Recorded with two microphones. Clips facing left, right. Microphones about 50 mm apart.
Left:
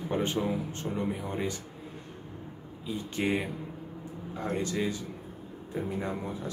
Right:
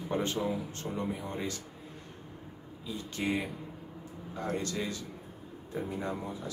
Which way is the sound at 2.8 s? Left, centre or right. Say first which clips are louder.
Left 3 dB; left.